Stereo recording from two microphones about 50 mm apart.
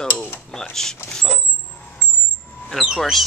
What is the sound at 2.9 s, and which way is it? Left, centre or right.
Speech, centre.